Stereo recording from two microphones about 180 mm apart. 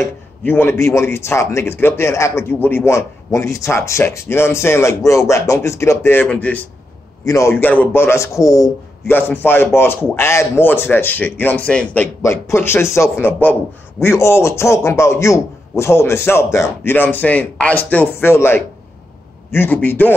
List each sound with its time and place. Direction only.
0.0 s speech: 5° left (ahead or behind)